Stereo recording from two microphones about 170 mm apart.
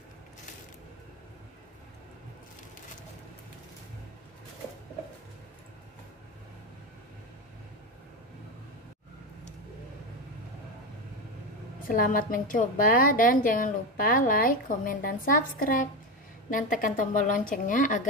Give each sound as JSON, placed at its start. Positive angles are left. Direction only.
{"t": 11.9, "sound": "a woman's voice", "side_deg": 55}